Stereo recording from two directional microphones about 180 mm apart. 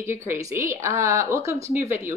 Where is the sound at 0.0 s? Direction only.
15° right (ahead or behind).